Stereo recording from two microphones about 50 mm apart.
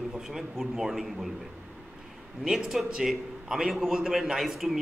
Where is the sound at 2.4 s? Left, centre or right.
Centre.